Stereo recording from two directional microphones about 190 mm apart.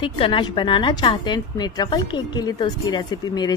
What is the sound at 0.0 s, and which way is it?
A woman's voice, 25° left (ahead or behind).